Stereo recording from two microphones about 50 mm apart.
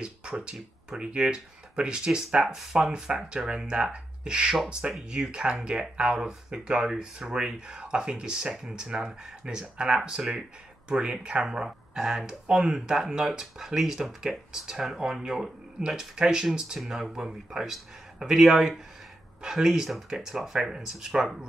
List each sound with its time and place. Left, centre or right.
0.0 s speech: centre
2.8 s speech: centre
17.1 s speech: centre
17.5 s speech: centre